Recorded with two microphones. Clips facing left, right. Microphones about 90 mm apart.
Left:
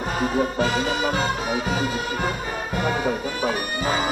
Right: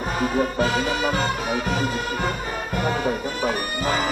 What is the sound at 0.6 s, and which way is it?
Music, 45° right (ahead or behind).